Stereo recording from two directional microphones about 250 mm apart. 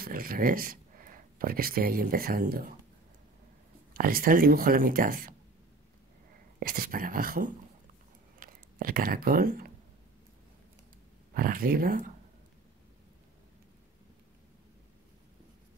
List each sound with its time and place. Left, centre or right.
0.0 s speech: right
3.9 s speech: right
6.6 s speech: right
11.3 s speech: right